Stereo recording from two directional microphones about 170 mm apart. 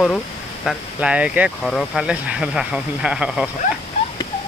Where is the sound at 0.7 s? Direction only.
5° right (ahead or behind).